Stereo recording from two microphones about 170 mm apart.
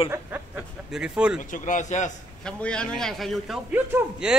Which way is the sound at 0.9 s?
5° right (ahead or behind).